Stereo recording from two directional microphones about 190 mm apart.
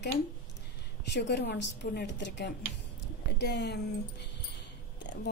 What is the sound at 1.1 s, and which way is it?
Speech, 65° left (ahead or behind).